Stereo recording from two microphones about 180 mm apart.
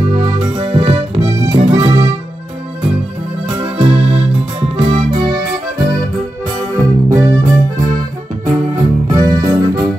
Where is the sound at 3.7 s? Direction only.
35° right (ahead or behind).